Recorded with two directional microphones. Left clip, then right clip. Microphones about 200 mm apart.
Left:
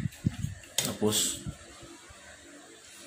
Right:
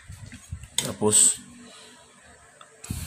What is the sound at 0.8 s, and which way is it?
Speech, 25° right (ahead or behind).